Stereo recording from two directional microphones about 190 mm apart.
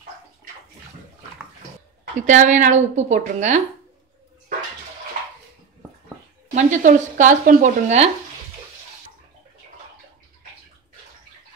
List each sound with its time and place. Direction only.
2.1 s speech: 40° right (ahead or behind)
6.5 s speech: 40° right (ahead or behind)